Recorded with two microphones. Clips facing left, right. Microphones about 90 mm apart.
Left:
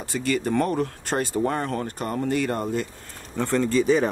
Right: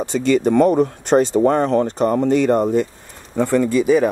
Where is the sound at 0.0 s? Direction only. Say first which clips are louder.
Right 9 dB; 25° right (ahead or behind).